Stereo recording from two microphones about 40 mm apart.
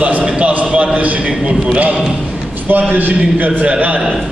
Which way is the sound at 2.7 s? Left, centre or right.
Right.